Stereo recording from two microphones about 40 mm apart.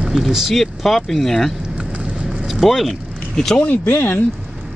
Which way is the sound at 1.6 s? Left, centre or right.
Right.